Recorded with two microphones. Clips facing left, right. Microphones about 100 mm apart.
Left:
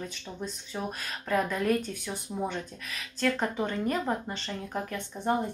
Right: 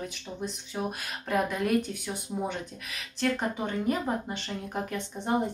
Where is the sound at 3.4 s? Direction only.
5° right (ahead or behind).